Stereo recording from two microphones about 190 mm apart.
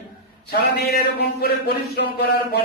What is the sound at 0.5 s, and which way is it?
Speech, 60° left (ahead or behind).